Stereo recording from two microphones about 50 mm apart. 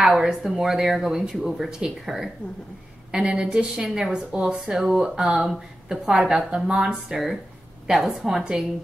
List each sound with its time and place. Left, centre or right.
0.0 s speech: centre